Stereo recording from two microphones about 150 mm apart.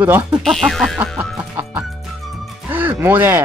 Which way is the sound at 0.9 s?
10° right (ahead or behind).